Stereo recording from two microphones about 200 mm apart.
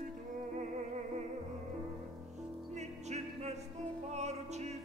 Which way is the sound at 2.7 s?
35° right (ahead or behind).